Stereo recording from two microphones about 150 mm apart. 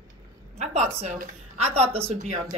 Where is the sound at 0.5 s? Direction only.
45° right (ahead or behind).